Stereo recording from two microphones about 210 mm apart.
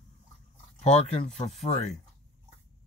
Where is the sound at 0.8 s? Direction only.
30° left (ahead or behind).